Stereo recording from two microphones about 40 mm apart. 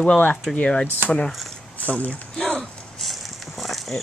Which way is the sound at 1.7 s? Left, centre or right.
Left.